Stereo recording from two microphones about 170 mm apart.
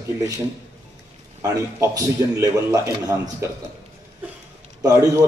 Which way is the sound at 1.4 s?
20° right (ahead or behind).